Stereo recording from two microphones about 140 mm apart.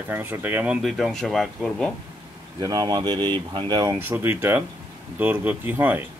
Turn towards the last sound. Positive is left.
turn(degrees=-15)  # may be behind; listen again after turning